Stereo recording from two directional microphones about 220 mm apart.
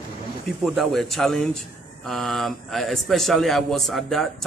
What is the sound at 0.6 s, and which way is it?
A man's voice, centre (ahead or behind).